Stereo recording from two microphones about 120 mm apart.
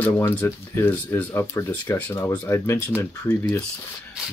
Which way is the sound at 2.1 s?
25° left (ahead or behind).